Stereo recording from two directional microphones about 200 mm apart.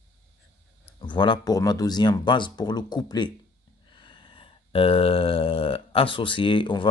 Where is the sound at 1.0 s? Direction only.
25° left (ahead or behind).